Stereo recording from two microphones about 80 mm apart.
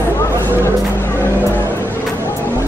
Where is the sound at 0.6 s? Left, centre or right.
Left.